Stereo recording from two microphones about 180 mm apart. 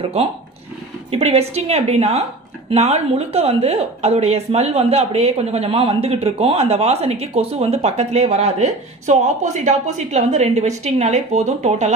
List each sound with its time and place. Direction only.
1.1 s a woman's voice: 35° right (ahead or behind)